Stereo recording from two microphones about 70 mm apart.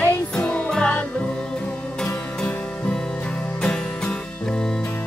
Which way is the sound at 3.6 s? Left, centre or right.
Centre.